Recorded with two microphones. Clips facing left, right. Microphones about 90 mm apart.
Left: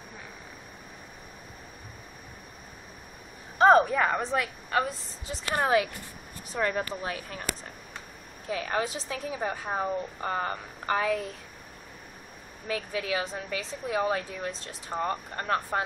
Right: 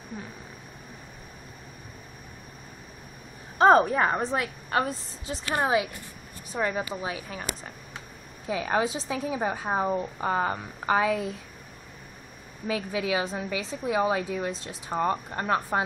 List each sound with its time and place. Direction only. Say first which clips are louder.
3.5 s speech: right 1 dB; 30° right (ahead or behind)
4.2 s a woman's voice: right 1 dB; 20° right (ahead or behind)
4.6 s a woman's voice: right 2 dB; 30° right (ahead or behind)
5.5 s a woman's voice: even; 15° right (ahead or behind)
8.5 s a woman's voice: right 4 dB; 15° right (ahead or behind)
12.6 s a woman's voice: right 3 dB; 15° right (ahead or behind)